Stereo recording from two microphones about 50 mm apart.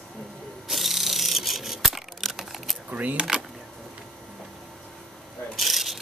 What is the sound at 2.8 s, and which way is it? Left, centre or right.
Keys jangling, right.